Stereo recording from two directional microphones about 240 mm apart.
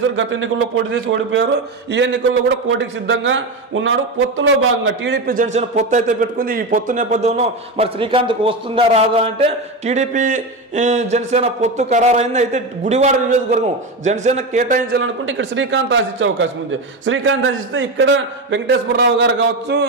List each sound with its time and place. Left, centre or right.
0.1 s a man's voice: right
15.0 s a man's voice: right